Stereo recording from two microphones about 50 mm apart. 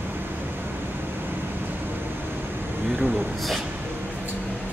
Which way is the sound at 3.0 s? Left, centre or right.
Right.